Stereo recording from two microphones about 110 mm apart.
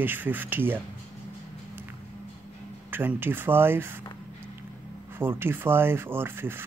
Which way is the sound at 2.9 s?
20° right (ahead or behind).